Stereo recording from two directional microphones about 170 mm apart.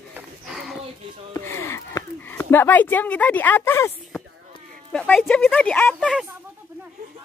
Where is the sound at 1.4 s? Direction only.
15° left (ahead or behind).